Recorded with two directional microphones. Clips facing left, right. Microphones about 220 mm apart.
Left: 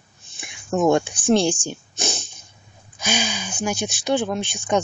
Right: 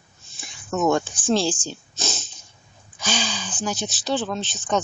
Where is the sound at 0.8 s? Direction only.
15° left (ahead or behind).